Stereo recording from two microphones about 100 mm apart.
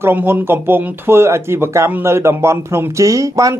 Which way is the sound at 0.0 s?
20° right (ahead or behind).